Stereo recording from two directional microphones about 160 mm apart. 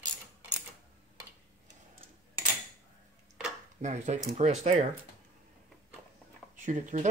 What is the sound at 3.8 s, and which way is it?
Speech, 45° right (ahead or behind).